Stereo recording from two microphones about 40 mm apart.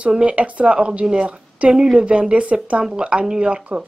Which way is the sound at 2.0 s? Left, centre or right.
Right.